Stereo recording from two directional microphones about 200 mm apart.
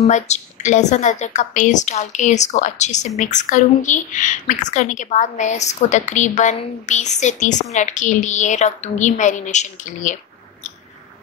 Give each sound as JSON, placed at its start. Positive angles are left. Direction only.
{"t": 0.0, "sound": "a woman's voice", "side_deg": 35}